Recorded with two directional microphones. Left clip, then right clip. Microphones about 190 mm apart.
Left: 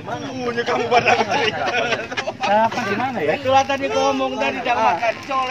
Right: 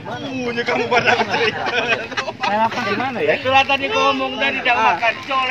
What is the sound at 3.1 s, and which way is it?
Speech, 55° left (ahead or behind).